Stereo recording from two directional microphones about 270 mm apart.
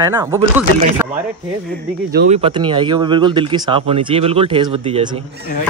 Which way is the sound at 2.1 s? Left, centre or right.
Right.